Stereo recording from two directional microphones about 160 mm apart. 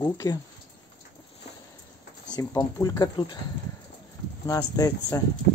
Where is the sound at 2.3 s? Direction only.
20° left (ahead or behind).